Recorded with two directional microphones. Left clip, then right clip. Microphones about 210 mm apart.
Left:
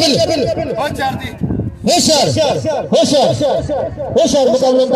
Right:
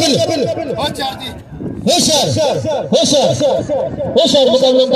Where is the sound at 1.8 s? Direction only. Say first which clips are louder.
Left 1 dB; 15° left (ahead or behind).